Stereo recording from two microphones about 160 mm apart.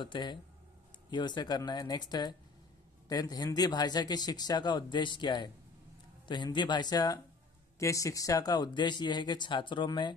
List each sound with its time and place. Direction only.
0.0 s speech: 30° left (ahead or behind)